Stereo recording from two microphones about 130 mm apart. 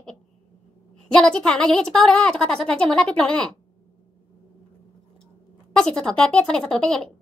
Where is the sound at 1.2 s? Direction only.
5° left (ahead or behind).